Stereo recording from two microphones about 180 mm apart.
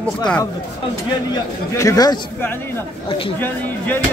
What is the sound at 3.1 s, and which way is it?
Speech, 30° left (ahead or behind).